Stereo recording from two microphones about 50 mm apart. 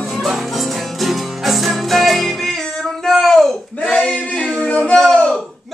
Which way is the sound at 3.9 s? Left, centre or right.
Left.